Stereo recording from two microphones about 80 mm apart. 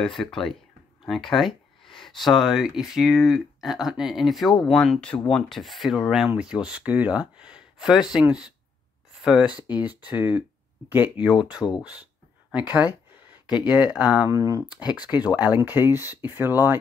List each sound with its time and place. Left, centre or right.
0.0 s speech: centre
4.7 s speech: centre
5.3 s speech: centre
9.8 s speech: centre
11.6 s speech: left
12.5 s speech: centre
14.3 s speech: right
15.0 s speech: centre